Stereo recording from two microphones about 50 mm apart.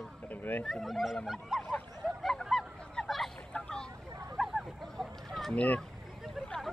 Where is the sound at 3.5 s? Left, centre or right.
Centre.